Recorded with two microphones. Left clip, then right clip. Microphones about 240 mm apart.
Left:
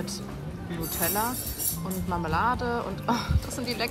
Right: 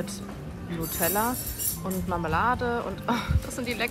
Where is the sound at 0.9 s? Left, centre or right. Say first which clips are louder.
Right 2 dB; centre.